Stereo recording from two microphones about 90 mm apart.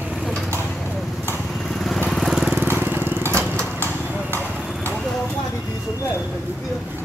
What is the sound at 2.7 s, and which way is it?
Crushing, 25° right (ahead or behind).